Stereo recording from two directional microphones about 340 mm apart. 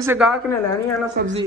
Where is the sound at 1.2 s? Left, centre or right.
Right.